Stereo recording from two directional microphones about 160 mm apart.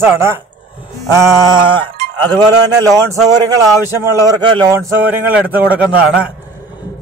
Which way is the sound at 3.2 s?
20° right (ahead or behind).